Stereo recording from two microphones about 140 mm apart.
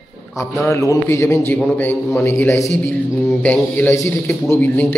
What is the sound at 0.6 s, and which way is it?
A man's voice, 20° left (ahead or behind).